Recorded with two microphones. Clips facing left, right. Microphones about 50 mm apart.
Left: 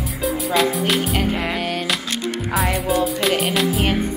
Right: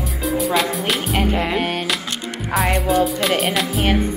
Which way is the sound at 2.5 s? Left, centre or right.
Right.